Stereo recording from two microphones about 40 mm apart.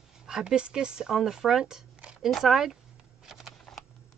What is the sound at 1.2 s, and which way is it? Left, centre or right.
Speech, centre.